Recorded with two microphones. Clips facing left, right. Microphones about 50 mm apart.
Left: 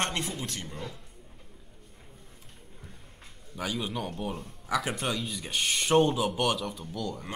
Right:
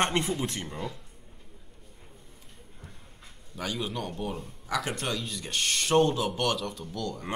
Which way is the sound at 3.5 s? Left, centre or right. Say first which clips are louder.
Even; centre.